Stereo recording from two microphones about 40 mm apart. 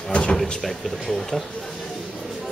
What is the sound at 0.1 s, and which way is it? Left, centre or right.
Speech, left.